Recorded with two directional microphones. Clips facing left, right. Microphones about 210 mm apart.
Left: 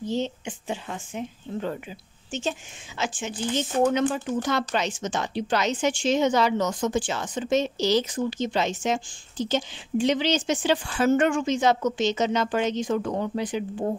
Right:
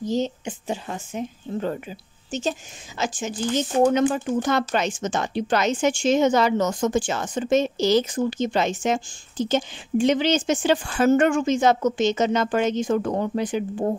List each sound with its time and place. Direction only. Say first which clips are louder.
0.0 s speech: right 3 dB; 40° right (ahead or behind)